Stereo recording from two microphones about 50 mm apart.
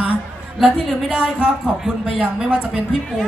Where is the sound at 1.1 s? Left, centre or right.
Right.